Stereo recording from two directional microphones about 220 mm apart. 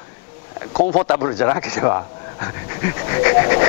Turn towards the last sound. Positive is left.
turn(degrees=15)  # may be behind; listen again after turning